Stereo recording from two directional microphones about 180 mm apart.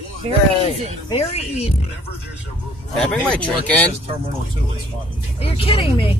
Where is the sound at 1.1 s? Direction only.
35° left (ahead or behind).